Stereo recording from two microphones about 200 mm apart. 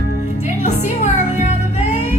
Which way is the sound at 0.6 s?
35° left (ahead or behind).